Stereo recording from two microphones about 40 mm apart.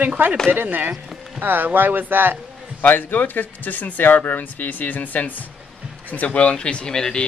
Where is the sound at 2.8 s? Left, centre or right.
Left.